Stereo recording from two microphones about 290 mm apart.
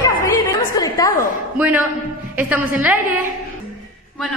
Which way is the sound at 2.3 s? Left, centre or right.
Centre.